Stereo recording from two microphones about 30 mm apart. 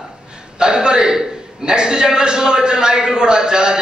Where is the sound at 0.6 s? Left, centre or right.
Right.